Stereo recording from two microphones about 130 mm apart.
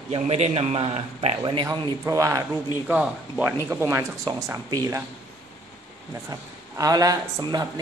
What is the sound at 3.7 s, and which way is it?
A man's voice, 20° right (ahead or behind).